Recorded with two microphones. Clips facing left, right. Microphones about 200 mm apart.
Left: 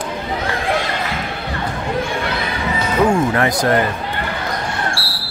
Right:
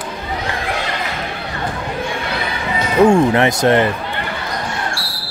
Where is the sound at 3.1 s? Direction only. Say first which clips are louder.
Right 4 dB; 25° right (ahead or behind).